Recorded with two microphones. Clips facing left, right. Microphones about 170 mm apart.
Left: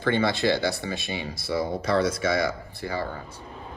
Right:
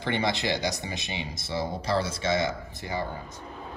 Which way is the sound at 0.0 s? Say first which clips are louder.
Left 5 dB; 15° right (ahead or behind).